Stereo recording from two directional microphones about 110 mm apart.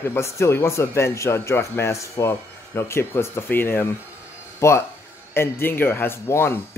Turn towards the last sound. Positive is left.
turn(degrees=20)  # may be behind; listen again after turning